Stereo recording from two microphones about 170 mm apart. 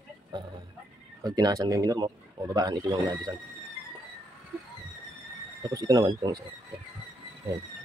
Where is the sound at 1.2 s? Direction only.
25° right (ahead or behind).